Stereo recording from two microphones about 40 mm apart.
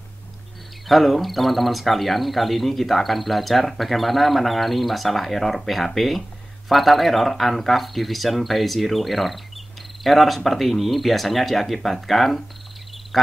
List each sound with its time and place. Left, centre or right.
0.8 s speech: centre